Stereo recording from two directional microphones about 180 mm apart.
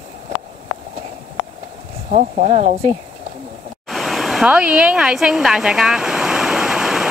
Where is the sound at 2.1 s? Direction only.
40° right (ahead or behind).